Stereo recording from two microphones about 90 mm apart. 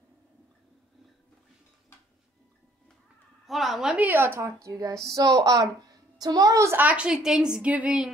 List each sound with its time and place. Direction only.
3.4 s a woman's voice: centre (ahead or behind)
3.9 s a woman's voice: 20° right (ahead or behind)
6.8 s a woman's voice: 15° right (ahead or behind)